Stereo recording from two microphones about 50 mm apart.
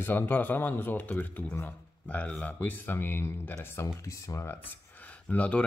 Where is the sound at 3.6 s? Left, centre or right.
Left.